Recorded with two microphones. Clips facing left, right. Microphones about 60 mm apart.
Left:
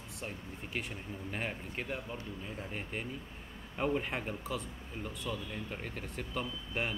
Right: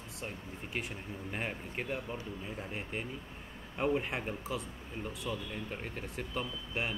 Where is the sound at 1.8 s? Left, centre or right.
Right.